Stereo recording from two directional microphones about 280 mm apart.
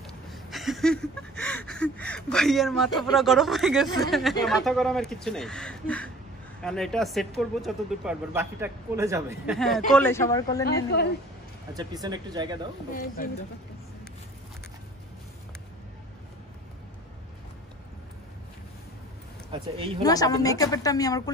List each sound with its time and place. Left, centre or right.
0.0 s a sound: centre
4.5 s speech: centre
9.8 s a woman's voice: centre
10.9 s a woman's voice: left
11.7 s speech: centre
12.9 s speech: left
19.5 s speech: centre
20.0 s a woman's voice: centre